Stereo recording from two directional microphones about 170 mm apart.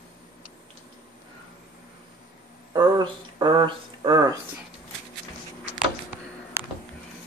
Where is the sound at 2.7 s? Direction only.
25° right (ahead or behind).